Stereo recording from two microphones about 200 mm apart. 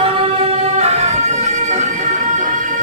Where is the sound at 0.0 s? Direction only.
30° right (ahead or behind).